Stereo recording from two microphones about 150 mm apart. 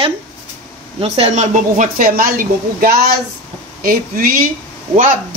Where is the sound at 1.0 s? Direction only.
45° right (ahead or behind).